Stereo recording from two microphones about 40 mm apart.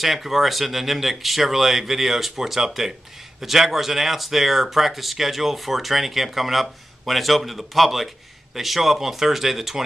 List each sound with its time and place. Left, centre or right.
0.0 s speech: centre